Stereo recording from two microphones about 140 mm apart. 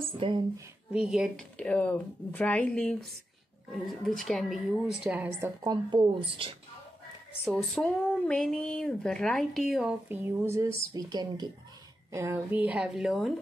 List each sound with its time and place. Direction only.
0.2 s speech: 35° right (ahead or behind)
0.9 s speech: 5° right (ahead or behind)
1.6 s speech: 10° left (ahead or behind); by 5.5 s 10° right (ahead or behind)
5.6 s speech: 30° right (ahead or behind)
7.4 s speech: centre (ahead or behind); by 11.4 s 30° right (ahead or behind)
12.1 s speech: 20° right (ahead or behind); by 13.3 s centre (ahead or behind)